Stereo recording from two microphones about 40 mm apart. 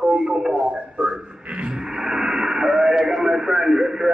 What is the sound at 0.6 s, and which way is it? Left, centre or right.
Speech, right.